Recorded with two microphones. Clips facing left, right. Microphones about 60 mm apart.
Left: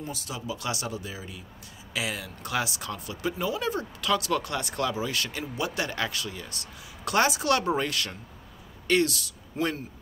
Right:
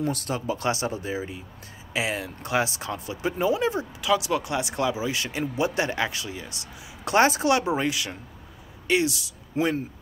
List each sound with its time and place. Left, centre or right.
0.0 s speech: right
7.4 s speech: centre